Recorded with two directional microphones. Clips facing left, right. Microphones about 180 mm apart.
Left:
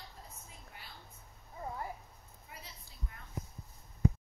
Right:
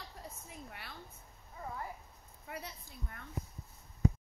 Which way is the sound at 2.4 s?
65° right (ahead or behind).